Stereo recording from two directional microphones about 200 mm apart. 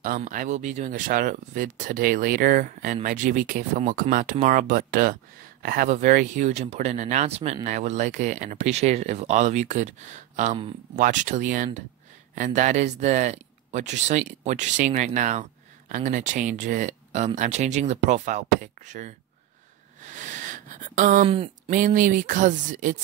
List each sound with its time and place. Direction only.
0.0 s speech: 45° right (ahead or behind)